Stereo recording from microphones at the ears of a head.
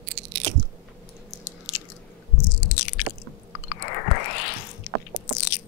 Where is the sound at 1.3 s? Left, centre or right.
Left.